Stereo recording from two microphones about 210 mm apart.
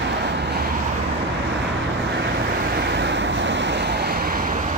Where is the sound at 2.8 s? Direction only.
55° right (ahead or behind).